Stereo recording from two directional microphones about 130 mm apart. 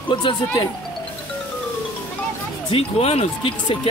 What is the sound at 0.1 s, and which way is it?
Speech, 40° left (ahead or behind).